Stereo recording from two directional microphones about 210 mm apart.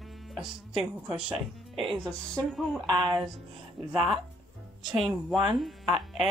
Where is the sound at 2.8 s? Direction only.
20° right (ahead or behind).